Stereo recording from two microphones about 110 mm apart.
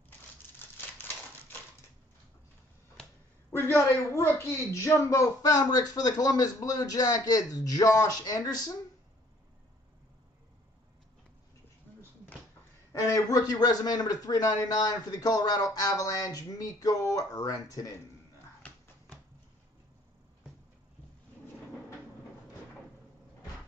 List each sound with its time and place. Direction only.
3.5 s a woman's voice: 20° left (ahead or behind)
12.9 s a woman's voice: 35° left (ahead or behind)